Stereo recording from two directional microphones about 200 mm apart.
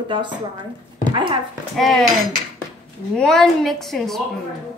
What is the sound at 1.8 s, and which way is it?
Female singing, centre (ahead or behind).